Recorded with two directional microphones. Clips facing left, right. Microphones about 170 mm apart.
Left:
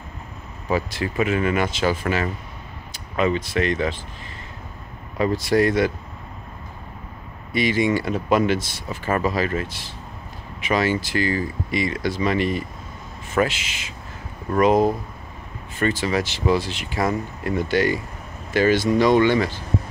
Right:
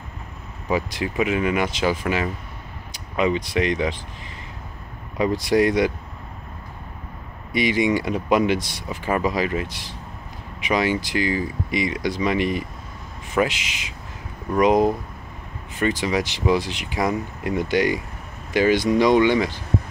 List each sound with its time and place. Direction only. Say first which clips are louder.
0.9 s speech: even; 10° right (ahead or behind)
5.1 s speech: even; 15° right (ahead or behind)
7.5 s speech: even; 15° right (ahead or behind)